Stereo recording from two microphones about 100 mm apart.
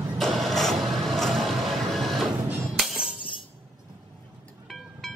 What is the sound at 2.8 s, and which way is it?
Music, centre (ahead or behind).